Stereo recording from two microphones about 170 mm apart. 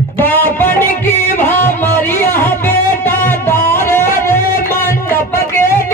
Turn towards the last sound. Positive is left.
turn(degrees=15)  # may be behind; listen again after turning